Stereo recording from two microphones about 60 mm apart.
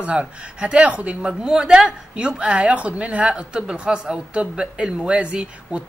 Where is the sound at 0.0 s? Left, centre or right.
Right.